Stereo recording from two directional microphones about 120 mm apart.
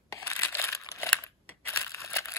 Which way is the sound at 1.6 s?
25° left (ahead or behind).